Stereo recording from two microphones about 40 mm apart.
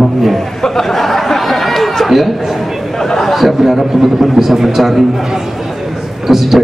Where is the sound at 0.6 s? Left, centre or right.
Centre.